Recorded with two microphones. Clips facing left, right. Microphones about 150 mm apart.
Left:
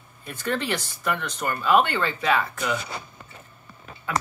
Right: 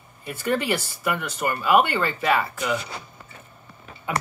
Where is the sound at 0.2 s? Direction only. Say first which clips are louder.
Right 3 dB; 10° right (ahead or behind).